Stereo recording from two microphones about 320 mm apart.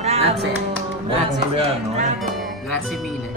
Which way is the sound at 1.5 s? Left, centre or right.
Centre.